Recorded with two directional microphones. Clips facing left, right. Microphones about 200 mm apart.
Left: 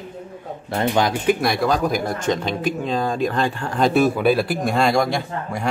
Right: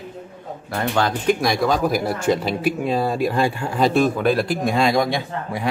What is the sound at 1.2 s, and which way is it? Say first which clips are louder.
Speech: even; centre (ahead or behind).